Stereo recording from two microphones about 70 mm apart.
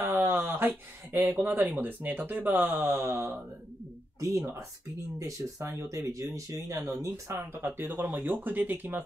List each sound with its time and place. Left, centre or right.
0.0 s speech: right
4.2 s speech: right
7.5 s speech: right